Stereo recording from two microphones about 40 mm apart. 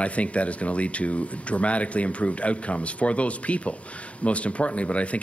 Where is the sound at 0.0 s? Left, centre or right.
Left.